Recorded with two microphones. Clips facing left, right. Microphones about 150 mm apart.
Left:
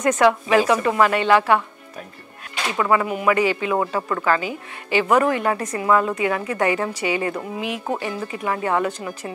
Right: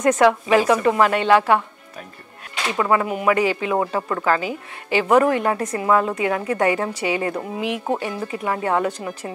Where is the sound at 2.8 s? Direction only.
20° right (ahead or behind).